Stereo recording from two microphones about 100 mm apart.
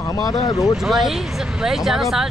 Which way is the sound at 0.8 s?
5° right (ahead or behind).